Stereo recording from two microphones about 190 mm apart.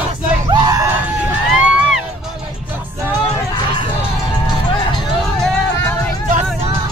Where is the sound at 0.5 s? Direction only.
20° right (ahead or behind).